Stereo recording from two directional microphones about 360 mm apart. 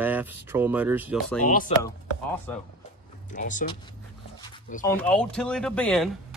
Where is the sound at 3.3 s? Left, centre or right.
Left.